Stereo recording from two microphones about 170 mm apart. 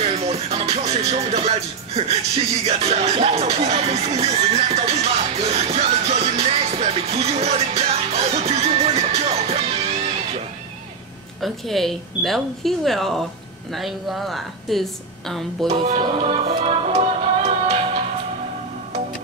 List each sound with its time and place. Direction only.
0.0 s music: 35° right (ahead or behind)
11.4 s a woman's voice: centre (ahead or behind)
15.7 s music: 35° right (ahead or behind)